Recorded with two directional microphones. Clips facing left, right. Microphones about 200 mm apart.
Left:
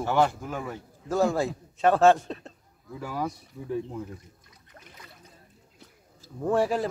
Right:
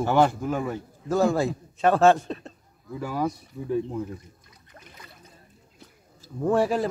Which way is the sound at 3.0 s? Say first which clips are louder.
Right 4 dB; 45° right (ahead or behind).